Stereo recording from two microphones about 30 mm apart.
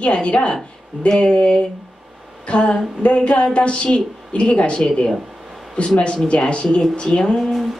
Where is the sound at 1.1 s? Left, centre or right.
Left.